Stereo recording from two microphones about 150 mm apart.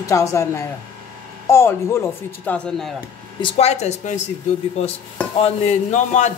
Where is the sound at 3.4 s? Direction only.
45° left (ahead or behind).